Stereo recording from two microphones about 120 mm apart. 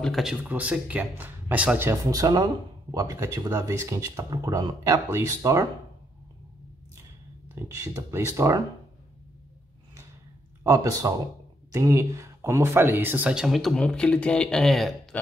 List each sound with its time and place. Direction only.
0.0 s speech: centre (ahead or behind)
2.0 s speech: 30° right (ahead or behind)
7.5 s speech: 25° right (ahead or behind)
10.6 s speech: 30° right (ahead or behind); by 15.0 s centre (ahead or behind)